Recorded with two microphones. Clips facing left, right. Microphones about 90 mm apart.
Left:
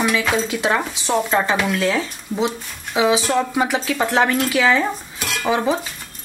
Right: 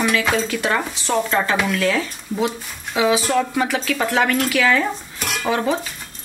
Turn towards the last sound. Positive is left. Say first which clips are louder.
# left 1 dB
turn(degrees=20)  # may be behind; listen again after turning